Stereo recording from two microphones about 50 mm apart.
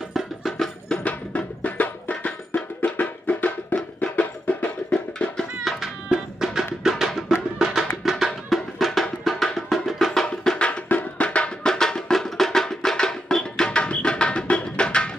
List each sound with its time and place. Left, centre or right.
0.4 s music: centre
1.0 s music: left
5.6 s music: centre
11.1 s music: left